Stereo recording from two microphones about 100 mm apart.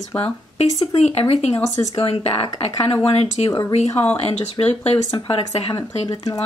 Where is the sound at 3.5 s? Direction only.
35° left (ahead or behind).